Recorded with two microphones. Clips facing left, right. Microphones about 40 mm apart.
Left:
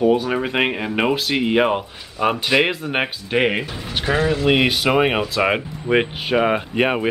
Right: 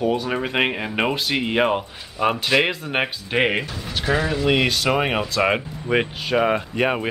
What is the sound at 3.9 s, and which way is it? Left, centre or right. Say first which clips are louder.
Speech: left 2 dB; centre.